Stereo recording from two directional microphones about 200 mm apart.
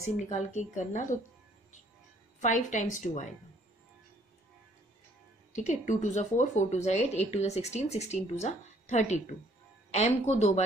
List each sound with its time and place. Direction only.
0.3 s a woman's voice: 35° left (ahead or behind)
2.4 s a woman's voice: 35° left (ahead or behind)
5.5 s a woman's voice: 35° left (ahead or behind)